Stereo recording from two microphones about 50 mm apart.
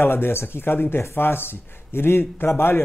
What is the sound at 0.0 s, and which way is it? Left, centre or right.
A man's voice, left.